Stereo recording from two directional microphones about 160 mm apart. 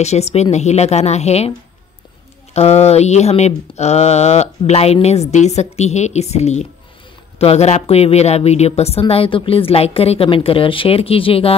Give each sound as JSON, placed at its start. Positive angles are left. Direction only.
{"t": 0.0, "sound": "speech", "side_deg": 40}
{"t": 2.5, "sound": "a woman's voice", "side_deg": 40}